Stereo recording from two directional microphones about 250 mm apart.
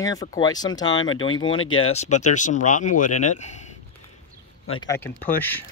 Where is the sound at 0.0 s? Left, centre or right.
Centre.